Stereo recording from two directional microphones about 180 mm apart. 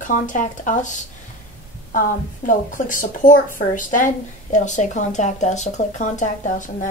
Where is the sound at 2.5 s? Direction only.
45° left (ahead or behind).